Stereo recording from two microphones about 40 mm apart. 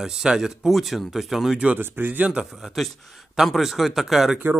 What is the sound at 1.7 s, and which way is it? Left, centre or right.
Speech, right.